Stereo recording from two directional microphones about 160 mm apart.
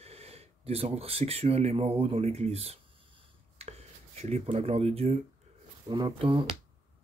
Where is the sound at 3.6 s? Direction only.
40° right (ahead or behind).